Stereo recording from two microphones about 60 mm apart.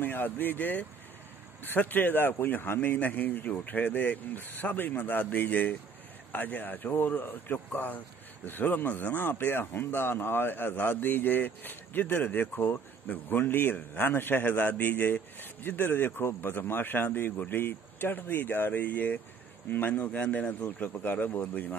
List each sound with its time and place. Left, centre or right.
0.0 s a man's voice: left